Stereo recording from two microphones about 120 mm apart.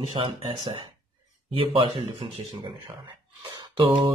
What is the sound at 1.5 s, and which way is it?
Speech, 50° right (ahead or behind).